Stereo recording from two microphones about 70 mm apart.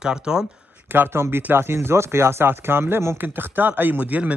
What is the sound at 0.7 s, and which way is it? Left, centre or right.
Speech, right.